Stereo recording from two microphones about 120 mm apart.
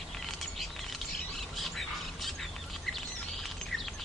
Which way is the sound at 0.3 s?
Centre (ahead or behind).